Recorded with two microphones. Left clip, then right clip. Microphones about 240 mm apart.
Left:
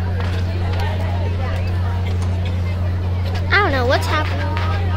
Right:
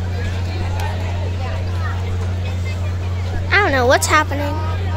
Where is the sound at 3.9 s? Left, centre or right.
Right.